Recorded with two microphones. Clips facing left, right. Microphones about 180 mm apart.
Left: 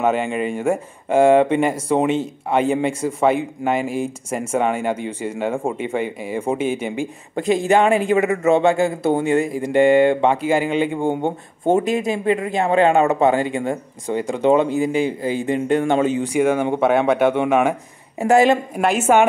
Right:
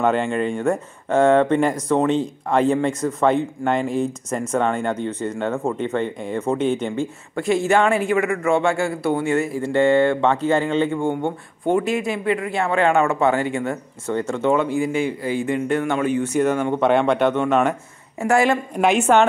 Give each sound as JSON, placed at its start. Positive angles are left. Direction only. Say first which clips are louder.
{"t": 0.0, "sound": "speech", "louder": "even", "side_deg": 5}
{"t": 16.3, "sound": "speech", "louder": "left 3 dB", "side_deg": 10}
{"t": 18.2, "sound": "speech", "louder": "left 3 dB", "side_deg": 20}
{"t": 18.8, "sound": "a woman's voice", "louder": "right 2 dB", "side_deg": 0}